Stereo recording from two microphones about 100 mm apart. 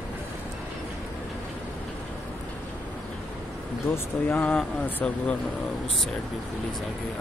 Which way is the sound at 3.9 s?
20° left (ahead or behind).